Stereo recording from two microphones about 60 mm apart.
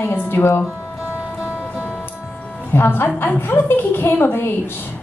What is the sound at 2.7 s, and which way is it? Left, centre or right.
A woman's voice, left.